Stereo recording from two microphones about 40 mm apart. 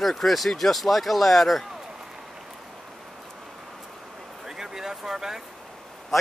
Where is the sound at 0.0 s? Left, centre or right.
Centre.